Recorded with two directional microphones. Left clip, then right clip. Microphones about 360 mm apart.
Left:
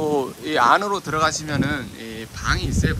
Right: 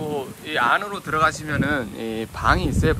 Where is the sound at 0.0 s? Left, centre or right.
Left.